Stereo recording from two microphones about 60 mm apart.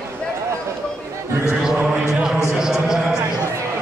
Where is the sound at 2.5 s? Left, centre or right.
Centre.